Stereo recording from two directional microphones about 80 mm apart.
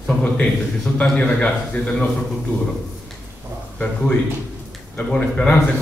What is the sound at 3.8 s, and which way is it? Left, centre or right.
A man's voice, centre.